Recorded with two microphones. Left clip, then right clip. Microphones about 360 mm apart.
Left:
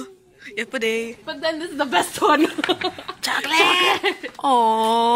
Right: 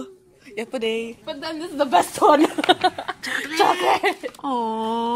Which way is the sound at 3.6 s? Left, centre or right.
Centre.